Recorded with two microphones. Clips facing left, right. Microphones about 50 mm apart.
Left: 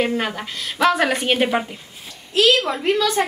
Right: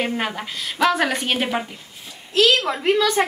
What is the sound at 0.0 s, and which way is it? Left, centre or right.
A woman's voice, centre.